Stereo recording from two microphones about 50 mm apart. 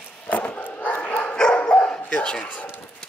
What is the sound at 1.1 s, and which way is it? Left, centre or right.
Dog, left.